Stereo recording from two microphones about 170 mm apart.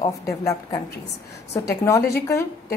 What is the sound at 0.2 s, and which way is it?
A woman's voice, 20° left (ahead or behind).